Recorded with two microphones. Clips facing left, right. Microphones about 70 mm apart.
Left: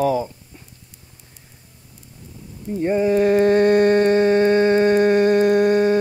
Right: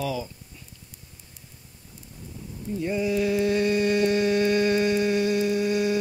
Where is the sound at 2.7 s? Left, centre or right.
Left.